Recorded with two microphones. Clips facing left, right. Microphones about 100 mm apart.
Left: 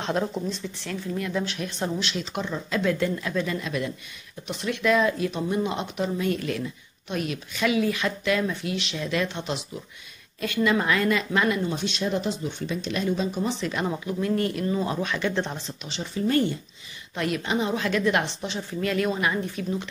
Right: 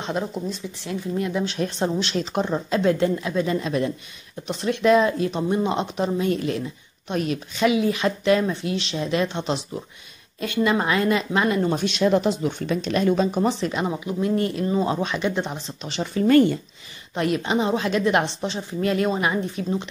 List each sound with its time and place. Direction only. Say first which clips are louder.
0.0 s speech: even; centre (ahead or behind)
1.3 s speech: right 3 dB; 25° right (ahead or behind)
1.6 s speech: right 5 dB; 35° right (ahead or behind)
7.6 s speech: right 4 dB; 20° right (ahead or behind)
11.6 s speech: right 5 dB; 45° right (ahead or behind)
11.9 s speech: right 7 dB; 65° right (ahead or behind)
13.7 s speech: right 2 dB; 20° right (ahead or behind)
15.3 s speech: right 1 dB; 10° right (ahead or behind)
15.9 s speech: right 7 dB; 65° right (ahead or behind)
17.1 s speech: right 4 dB; 30° right (ahead or behind)